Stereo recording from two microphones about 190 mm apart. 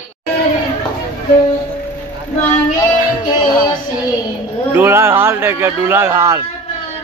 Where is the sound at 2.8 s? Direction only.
20° left (ahead or behind).